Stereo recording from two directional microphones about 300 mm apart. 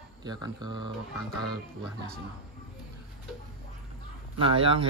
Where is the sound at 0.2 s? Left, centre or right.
Centre.